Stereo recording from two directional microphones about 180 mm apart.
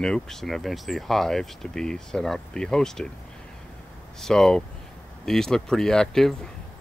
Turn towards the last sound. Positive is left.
turn(degrees=0)  # may be behind; listen again after turning